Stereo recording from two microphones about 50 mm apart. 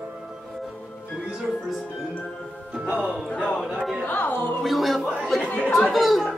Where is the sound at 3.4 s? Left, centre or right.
Centre.